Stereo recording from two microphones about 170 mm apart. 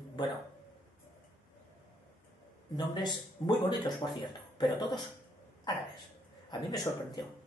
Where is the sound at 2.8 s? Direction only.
25° left (ahead or behind).